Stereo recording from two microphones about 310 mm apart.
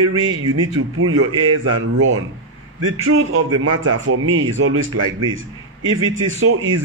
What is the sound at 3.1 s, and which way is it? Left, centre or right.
Speech, right.